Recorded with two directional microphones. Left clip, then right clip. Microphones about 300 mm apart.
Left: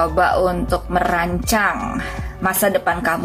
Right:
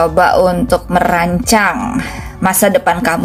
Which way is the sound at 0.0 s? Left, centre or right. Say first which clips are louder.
Right 6 dB; centre.